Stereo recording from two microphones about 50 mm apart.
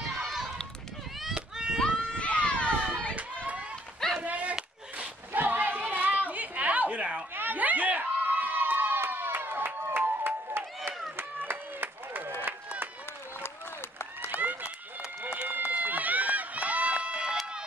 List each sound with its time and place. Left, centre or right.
0.2 s run: centre
1.3 s children playing: centre
1.8 s a sound: left
4.2 s a sound: right
7.3 s a sound: right
11.1 s run: right
14.3 s run: right
15.0 s run: right
15.4 s run: right